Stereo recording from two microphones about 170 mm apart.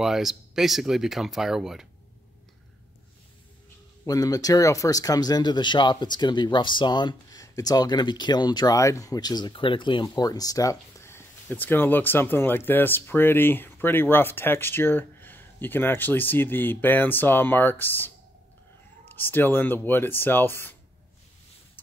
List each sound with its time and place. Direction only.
0.0 s speech: centre (ahead or behind)
4.0 s speech: 20° left (ahead or behind)